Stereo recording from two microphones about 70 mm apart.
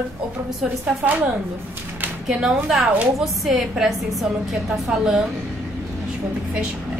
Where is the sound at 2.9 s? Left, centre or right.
Right.